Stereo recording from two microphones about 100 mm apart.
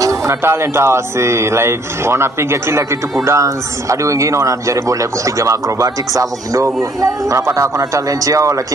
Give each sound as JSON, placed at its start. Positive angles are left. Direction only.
{"t": 0.0, "sound": "speech", "side_deg": -25}